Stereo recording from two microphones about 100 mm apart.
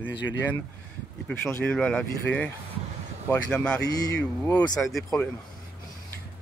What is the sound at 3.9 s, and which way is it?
Speech, 40° left (ahead or behind).